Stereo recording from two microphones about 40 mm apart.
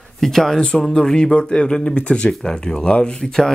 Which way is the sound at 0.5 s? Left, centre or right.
Centre.